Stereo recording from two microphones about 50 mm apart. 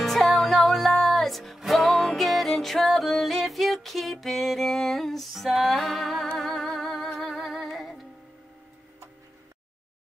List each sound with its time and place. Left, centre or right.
0.0 s music: centre